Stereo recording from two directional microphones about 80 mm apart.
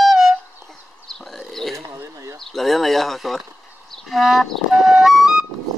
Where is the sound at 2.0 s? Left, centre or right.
Right.